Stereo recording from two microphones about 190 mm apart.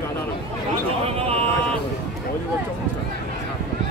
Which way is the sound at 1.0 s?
30° right (ahead or behind).